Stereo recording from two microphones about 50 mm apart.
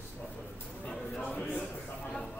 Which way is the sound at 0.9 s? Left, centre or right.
Centre.